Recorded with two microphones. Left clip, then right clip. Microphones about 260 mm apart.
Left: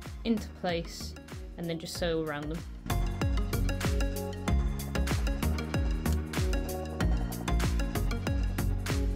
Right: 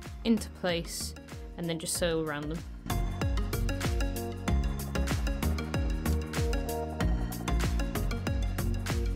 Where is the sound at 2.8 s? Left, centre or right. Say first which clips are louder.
Left 1 dB; centre.